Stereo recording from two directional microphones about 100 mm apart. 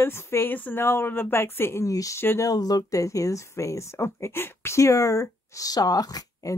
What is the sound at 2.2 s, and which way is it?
Speech, 25° left (ahead or behind).